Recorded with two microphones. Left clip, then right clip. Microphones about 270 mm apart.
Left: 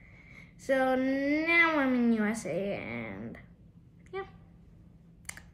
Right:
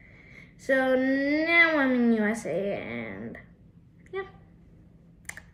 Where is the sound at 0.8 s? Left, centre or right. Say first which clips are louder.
Right 4 dB; centre.